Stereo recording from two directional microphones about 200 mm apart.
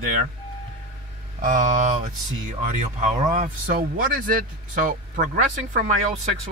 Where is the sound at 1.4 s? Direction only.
40° right (ahead or behind).